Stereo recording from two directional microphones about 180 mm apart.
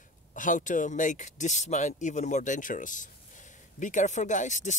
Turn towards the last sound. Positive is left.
turn(degrees=40)  # may be behind; listen again after turning